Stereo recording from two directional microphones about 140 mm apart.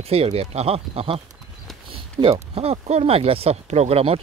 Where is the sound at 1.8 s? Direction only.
40° right (ahead or behind).